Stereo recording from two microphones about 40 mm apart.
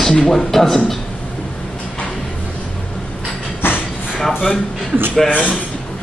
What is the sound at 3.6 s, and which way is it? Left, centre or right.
Train, left.